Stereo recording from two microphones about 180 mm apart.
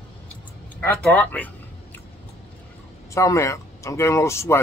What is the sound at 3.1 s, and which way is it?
Speech, 15° left (ahead or behind).